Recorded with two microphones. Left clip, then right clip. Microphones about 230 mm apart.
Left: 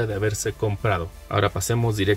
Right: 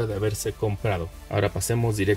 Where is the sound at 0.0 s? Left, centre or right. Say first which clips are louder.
Left 2 dB; centre.